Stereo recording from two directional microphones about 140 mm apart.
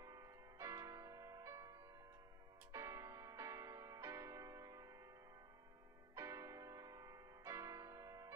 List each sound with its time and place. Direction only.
0.0 s music: 25° right (ahead or behind)
2.7 s music: 25° right (ahead or behind)
6.1 s music: 25° right (ahead or behind)